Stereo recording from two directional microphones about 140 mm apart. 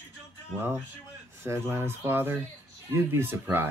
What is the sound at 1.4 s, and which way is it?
Speech, 20° right (ahead or behind).